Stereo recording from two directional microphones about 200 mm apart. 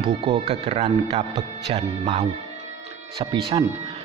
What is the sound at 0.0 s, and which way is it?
Speech, 25° right (ahead or behind).